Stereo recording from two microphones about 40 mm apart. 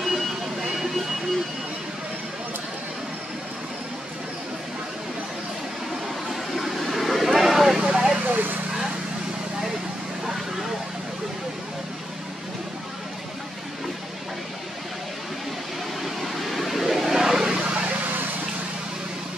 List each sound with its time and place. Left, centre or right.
0.0 s vehicle: centre
6.2 s vehicle: centre
7.8 s a sound: right
8.3 s a sound: right
16.0 s vehicle: centre
17.6 s vehicle: right